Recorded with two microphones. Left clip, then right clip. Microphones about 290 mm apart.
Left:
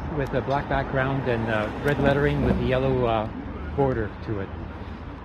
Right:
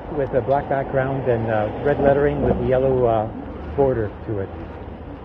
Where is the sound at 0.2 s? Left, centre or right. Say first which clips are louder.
Right 6 dB; left.